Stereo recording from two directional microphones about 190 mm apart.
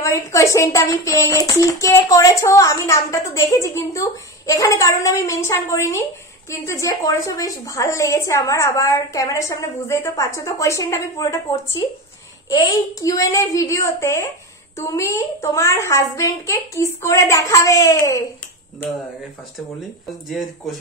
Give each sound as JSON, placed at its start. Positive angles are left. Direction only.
{"t": 0.0, "sound": "speech", "side_deg": 15}
{"t": 20.2, "sound": "speech", "side_deg": 0}